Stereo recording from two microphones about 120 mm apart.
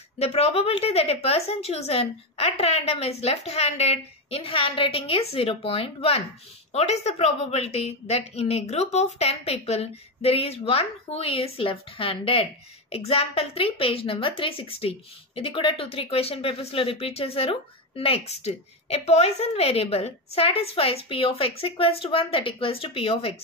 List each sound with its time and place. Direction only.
0.2 s a woman's voice: 60° left (ahead or behind)